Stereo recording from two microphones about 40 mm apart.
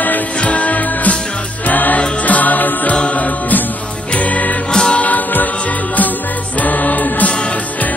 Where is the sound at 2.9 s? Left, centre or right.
Left.